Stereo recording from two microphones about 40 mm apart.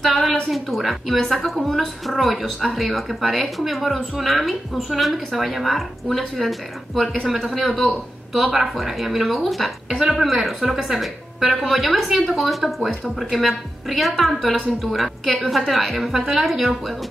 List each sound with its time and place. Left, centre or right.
0.0 s a woman's voice: centre
9.8 s a woman's voice: centre